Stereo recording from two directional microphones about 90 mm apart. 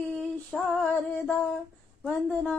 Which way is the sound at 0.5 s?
Centre (ahead or behind).